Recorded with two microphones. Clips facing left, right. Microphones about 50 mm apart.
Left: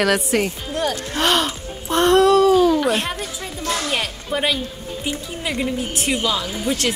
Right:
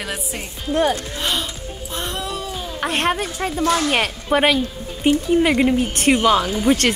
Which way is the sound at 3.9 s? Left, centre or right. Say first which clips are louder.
Right 4 dB; right.